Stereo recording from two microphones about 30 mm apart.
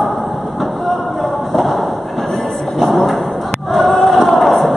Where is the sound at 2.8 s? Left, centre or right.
Centre.